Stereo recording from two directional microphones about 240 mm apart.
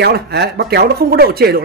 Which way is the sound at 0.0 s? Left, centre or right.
Right.